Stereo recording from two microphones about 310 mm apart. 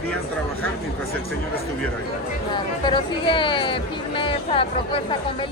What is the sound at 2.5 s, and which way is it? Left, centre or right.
Speech, centre.